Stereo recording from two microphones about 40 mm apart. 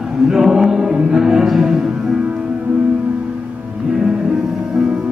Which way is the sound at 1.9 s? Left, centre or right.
Right.